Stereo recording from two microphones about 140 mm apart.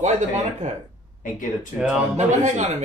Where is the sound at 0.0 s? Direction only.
55° right (ahead or behind).